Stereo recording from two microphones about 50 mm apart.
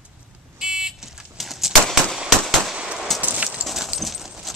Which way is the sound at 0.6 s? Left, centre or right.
Centre.